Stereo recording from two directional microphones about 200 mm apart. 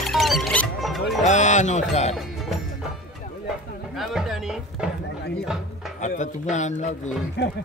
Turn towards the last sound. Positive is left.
turn(degrees=55)  # may be behind; listen again after turning